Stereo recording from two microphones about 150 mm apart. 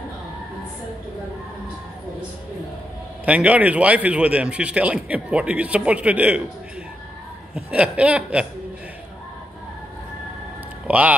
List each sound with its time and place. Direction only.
3.3 s a man's voice: 10° right (ahead or behind)
7.5 s a man's voice: 5° right (ahead or behind)
10.9 s a man's voice: 10° right (ahead or behind)